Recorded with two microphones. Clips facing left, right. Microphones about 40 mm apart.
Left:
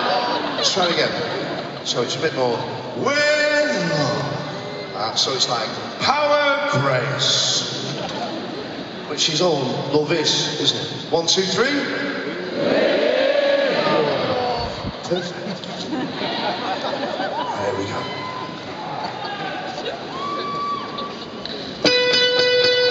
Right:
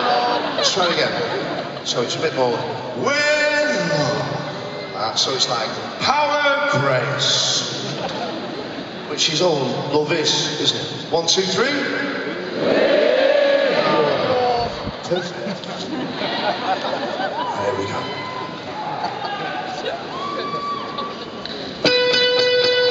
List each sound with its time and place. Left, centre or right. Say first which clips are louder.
0.0 s a sound: right 2 dB; centre
0.7 s a man's voice: left 1 dB; centre
3.1 s male singing: even; centre
3.6 s a sound: right 1 dB; centre
5.0 s a man's voice: right 1 dB; centre
7.2 s a man's voice: right 1 dB; right
9.4 s a man's voice: right 1 dB; centre
11.3 s a sound: even; centre
21.9 s music: right 1 dB; centre